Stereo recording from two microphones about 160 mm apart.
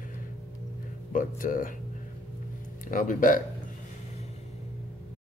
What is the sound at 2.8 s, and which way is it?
Speech, 55° left (ahead or behind).